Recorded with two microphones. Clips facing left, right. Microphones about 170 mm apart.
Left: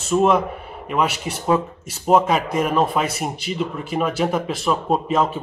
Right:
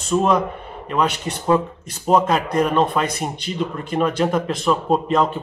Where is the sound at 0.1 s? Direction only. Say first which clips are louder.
Left 1 dB; 5° left (ahead or behind).